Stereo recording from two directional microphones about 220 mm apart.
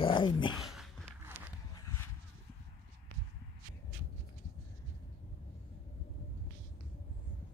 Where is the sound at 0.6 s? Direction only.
Centre (ahead or behind).